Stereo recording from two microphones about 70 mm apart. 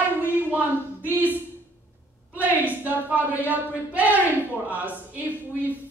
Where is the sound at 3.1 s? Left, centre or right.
Right.